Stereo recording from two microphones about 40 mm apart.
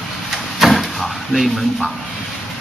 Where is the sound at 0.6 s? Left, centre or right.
Centre.